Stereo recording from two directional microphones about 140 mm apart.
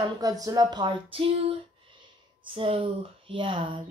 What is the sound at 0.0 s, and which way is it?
Speech, 25° right (ahead or behind).